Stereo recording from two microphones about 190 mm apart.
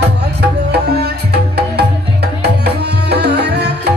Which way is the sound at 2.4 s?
60° right (ahead or behind).